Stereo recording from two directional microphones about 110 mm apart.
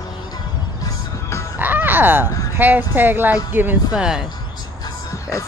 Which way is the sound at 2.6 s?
15° right (ahead or behind).